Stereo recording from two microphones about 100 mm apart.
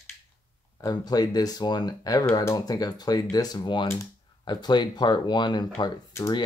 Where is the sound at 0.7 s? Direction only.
40° left (ahead or behind).